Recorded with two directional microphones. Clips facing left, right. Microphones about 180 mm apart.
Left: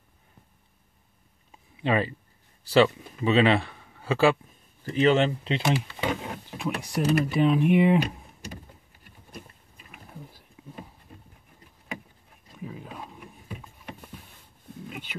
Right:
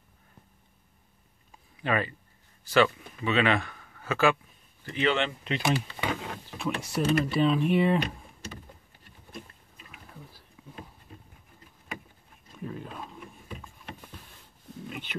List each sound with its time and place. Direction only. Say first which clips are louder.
1.8 s a man's voice: left 3 dB; 30° left (ahead or behind)
6.5 s speech: left 1 dB; 15° left (ahead or behind)
12.5 s wild animals: right 1 dB; 5° left (ahead or behind)
14.9 s a sound: right 1 dB; 10° left (ahead or behind)